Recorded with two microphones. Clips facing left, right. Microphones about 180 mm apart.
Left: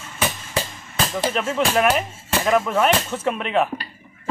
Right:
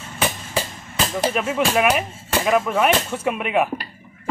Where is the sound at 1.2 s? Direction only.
10° right (ahead or behind).